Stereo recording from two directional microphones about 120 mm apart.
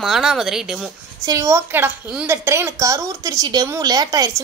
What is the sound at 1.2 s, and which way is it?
A woman's voice, 25° right (ahead or behind).